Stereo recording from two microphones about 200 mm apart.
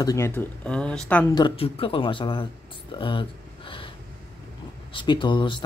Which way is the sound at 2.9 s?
25° left (ahead or behind).